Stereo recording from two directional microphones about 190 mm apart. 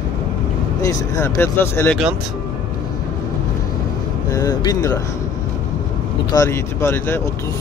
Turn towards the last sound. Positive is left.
turn(degrees=10)  # may be behind; listen again after turning